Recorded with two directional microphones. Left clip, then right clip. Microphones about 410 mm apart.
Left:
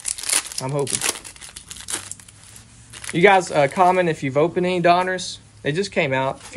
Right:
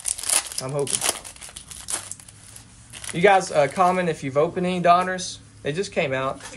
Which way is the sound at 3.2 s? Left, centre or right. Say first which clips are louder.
Left 2 dB; centre.